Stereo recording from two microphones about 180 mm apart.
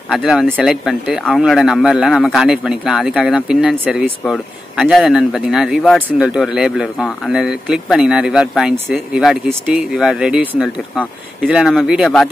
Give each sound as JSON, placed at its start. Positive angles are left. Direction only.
{"t": 0.1, "sound": "speech", "side_deg": 0}